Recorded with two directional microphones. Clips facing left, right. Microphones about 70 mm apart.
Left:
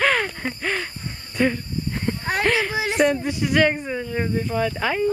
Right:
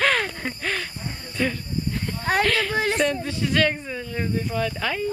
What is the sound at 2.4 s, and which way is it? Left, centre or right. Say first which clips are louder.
Speech: left 3 dB; centre.